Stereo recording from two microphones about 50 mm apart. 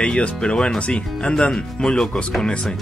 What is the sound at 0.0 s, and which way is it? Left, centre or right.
Speech, centre.